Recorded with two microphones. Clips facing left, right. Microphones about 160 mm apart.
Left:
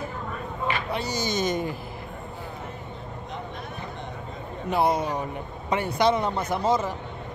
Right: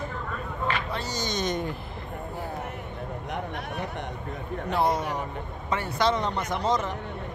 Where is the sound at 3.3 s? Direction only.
70° right (ahead or behind).